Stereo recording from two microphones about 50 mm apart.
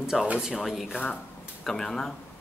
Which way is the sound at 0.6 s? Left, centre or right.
Centre.